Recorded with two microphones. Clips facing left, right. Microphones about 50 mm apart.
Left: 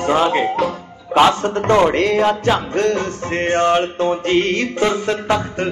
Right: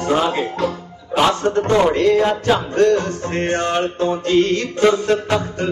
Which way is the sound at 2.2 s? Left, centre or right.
Left.